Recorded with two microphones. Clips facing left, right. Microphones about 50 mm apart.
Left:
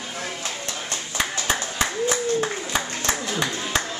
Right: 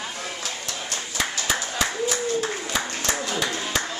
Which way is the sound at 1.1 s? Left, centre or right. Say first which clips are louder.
Left 1 dB; left.